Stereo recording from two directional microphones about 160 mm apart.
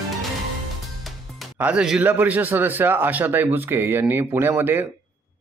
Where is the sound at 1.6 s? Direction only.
5° right (ahead or behind).